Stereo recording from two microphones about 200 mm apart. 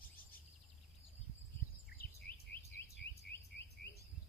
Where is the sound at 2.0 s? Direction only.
50° left (ahead or behind).